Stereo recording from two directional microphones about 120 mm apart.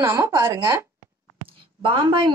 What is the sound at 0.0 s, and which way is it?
Speech, 30° right (ahead or behind).